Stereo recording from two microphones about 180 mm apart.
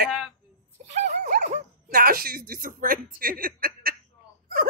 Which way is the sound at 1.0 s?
65° right (ahead or behind).